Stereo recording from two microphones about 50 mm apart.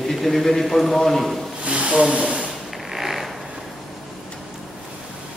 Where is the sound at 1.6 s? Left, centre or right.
Right.